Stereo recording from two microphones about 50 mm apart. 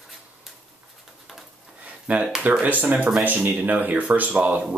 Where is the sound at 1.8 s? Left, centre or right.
Right.